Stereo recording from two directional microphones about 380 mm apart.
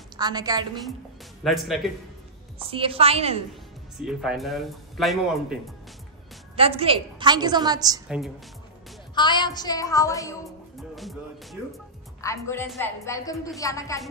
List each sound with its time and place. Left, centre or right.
0.2 s a woman's voice: centre
1.4 s speech: centre
2.6 s a woman's voice: centre
4.0 s speech: centre
6.5 s a woman's voice: centre
9.1 s a woman's voice: centre
10.8 s music: centre
12.2 s a woman's voice: centre